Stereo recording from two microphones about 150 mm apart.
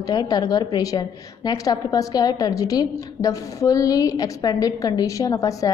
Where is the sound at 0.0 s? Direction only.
25° left (ahead or behind).